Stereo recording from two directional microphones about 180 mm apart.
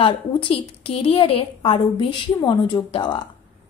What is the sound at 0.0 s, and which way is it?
A woman's voice, 30° left (ahead or behind).